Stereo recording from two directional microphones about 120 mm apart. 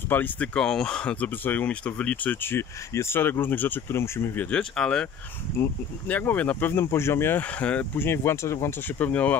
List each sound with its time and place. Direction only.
0.1 s speech: 15° left (ahead or behind)
4.5 s speech: 5° left (ahead or behind)
5.6 s speech: 15° left (ahead or behind)